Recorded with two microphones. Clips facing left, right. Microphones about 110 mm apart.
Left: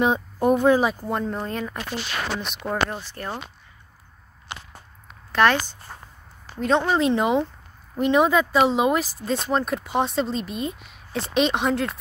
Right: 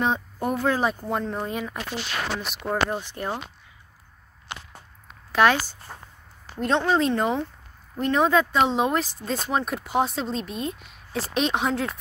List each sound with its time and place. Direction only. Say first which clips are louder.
0.0 s speech: left 4 dB; 15° left (ahead or behind)
0.7 s speech: left 2 dB; 5° left (ahead or behind)
2.9 s speech: right 3 dB; 15° right (ahead or behind)
5.3 s speech: even; 10° right (ahead or behind)
6.8 s speech: left 1 dB; 5° left (ahead or behind)